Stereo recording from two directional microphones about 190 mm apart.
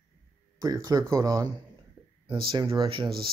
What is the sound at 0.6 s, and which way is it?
Speech, 20° right (ahead or behind).